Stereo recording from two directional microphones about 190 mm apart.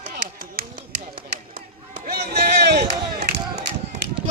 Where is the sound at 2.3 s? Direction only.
60° right (ahead or behind).